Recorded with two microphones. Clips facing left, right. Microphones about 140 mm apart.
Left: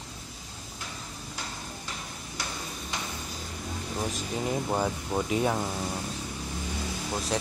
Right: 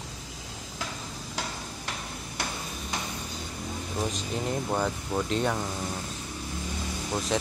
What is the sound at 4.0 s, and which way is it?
Speech, 5° left (ahead or behind).